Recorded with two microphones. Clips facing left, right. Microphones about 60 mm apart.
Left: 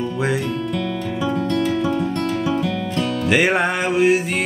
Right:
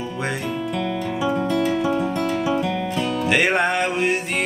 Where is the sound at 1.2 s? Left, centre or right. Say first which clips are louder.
Even; centre.